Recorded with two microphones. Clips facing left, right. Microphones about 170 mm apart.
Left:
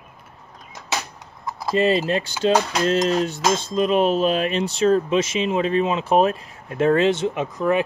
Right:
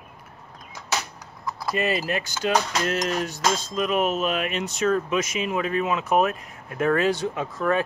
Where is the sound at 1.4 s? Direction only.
25° left (ahead or behind).